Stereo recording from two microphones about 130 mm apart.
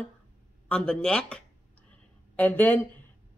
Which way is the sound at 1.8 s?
10° left (ahead or behind).